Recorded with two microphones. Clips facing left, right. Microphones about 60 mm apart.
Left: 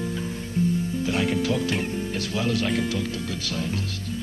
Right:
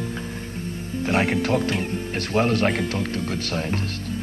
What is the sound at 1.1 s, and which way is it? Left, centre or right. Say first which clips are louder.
Speech: right 4 dB; right.